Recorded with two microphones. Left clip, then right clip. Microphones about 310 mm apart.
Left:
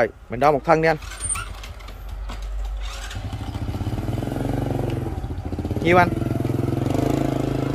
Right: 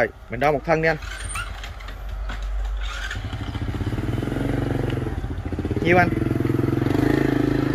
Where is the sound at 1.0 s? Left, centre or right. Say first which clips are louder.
Right 1 dB; left.